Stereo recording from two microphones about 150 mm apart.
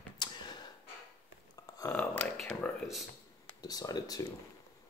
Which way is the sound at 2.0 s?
Centre (ahead or behind).